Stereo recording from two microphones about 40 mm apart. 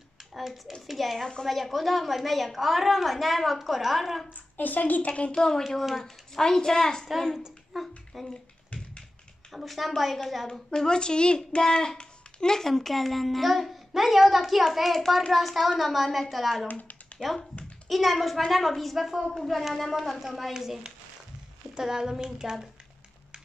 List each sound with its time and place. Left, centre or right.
0.8 s a child's voice: centre
1.2 s speech: centre
1.5 s a child's voice: centre
4.6 s a woman's voice: left
5.3 s speech: centre
5.9 s speech: centre
7.7 s a sound: centre
8.7 s tap: left
9.5 s a child's voice: centre
10.7 s a woman's voice: centre